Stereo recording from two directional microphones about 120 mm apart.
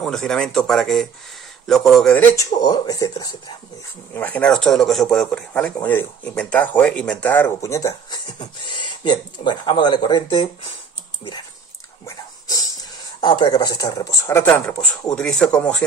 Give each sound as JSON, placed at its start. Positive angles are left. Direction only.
{"t": 0.0, "sound": "speech", "side_deg": 5}
{"t": 2.3, "sound": "speech", "side_deg": 30}
{"t": 4.1, "sound": "speech", "side_deg": 15}
{"t": 13.2, "sound": "speech", "side_deg": 40}